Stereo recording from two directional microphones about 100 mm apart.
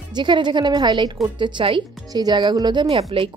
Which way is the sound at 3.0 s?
75° right (ahead or behind).